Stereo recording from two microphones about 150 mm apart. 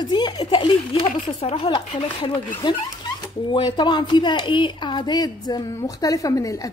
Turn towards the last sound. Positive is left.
turn(degrees=20)  # may be behind; listen again after turning